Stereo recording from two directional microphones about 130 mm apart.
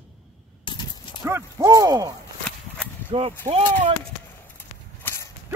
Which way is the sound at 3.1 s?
45° right (ahead or behind).